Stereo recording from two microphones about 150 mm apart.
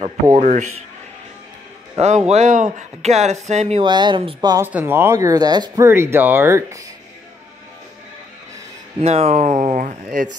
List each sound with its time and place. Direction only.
0.0 s a man's voice: 55° right (ahead or behind)
2.0 s speech: 45° right (ahead or behind)
3.8 s speech: 30° right (ahead or behind)
4.6 s speech: 15° right (ahead or behind)
5.9 s speech: 15° right (ahead or behind)
9.0 s speech: 45° right (ahead or behind)